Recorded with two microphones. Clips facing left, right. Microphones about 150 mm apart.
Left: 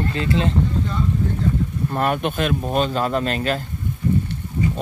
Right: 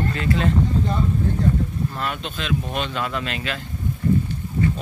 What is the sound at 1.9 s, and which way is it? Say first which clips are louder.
Speech: left 8 dB; 55° left (ahead or behind).